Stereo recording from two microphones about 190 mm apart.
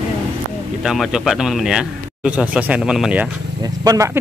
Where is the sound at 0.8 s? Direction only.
Centre (ahead or behind).